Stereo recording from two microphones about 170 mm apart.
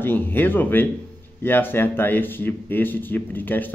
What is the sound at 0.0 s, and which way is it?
A man's voice, 10° left (ahead or behind).